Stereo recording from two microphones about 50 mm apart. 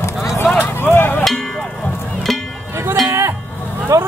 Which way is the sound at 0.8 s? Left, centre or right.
Left.